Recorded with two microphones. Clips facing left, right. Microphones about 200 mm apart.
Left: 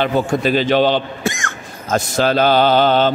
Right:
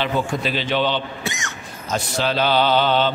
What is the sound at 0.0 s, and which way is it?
A man's voice, 45° left (ahead or behind).